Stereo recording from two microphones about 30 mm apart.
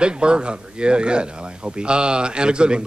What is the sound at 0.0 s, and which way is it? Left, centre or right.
A man's voice, right.